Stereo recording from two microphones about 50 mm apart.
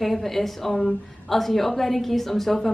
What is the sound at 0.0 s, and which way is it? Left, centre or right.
A woman's voice, centre.